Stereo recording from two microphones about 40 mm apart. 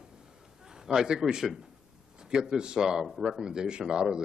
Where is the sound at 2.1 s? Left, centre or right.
Centre.